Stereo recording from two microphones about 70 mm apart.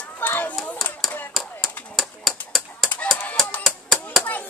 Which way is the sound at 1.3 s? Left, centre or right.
Centre.